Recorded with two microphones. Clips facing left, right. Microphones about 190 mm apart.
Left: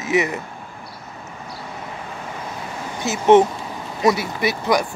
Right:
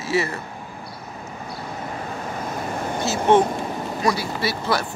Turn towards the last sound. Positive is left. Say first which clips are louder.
# left 4 dB
turn(degrees=15)  # may be behind; listen again after turning